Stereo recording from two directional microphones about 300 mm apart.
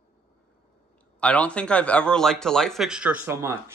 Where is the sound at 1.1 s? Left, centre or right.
Centre.